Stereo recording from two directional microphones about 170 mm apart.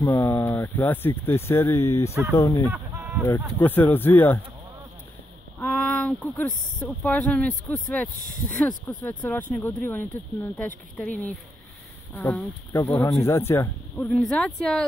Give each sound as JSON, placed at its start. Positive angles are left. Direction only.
{"t": 0.0, "sound": "speech", "side_deg": 15}
{"t": 2.7, "sound": "fowl", "side_deg": -10}
{"t": 3.3, "sound": "speech", "side_deg": 10}
{"t": 5.6, "sound": "speech", "side_deg": 5}
{"t": 14.0, "sound": "speech", "side_deg": 5}